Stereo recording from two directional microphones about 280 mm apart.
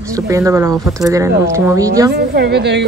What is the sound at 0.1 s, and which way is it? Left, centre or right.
Speech, centre.